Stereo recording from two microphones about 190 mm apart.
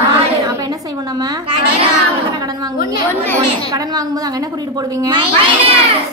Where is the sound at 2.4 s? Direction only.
20° right (ahead or behind).